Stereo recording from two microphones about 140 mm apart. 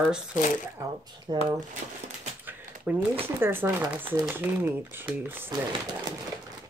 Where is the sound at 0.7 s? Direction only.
30° right (ahead or behind).